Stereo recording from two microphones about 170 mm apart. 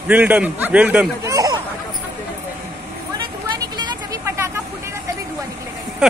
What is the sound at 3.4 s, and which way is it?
Vehicle, 25° right (ahead or behind).